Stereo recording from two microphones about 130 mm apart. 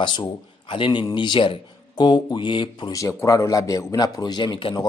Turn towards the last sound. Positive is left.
turn(degrees=40)  # may be behind; listen again after turning